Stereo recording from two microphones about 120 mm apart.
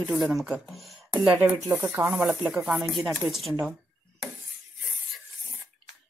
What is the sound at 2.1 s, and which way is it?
Speech, 5° right (ahead or behind).